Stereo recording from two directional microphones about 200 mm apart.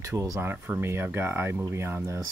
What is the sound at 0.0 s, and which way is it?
Speech, 15° right (ahead or behind).